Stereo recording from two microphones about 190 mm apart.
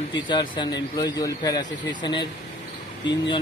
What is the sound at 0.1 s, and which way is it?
A man's voice, 25° left (ahead or behind).